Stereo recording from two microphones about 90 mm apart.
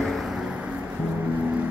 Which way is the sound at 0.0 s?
Centre (ahead or behind).